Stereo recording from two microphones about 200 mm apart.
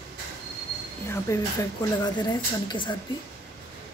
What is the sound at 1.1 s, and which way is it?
Speech, 15° left (ahead or behind).